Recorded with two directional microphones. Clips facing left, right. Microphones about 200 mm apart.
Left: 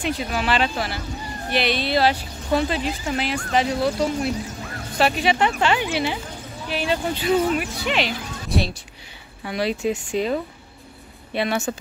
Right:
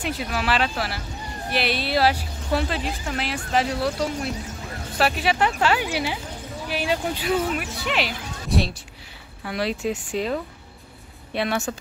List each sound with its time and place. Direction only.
0.0 s speech: 5° right (ahead or behind)